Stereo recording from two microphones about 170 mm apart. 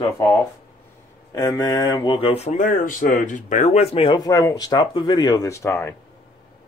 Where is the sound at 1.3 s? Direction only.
20° left (ahead or behind).